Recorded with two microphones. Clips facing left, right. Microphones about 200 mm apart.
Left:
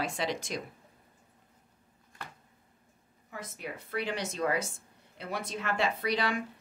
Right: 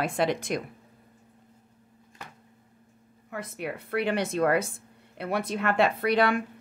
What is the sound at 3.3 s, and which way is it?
A woman's voice, 65° right (ahead or behind).